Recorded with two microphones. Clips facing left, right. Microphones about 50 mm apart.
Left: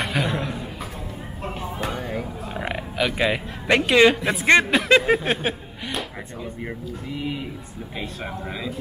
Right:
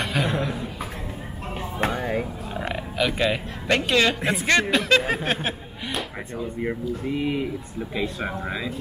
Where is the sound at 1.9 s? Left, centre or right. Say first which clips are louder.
Right 3 dB; centre.